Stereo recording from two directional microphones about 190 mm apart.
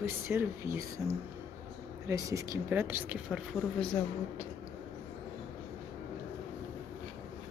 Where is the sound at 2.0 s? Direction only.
15° right (ahead or behind).